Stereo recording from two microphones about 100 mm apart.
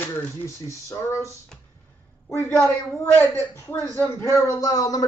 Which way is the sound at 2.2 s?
25° left (ahead or behind).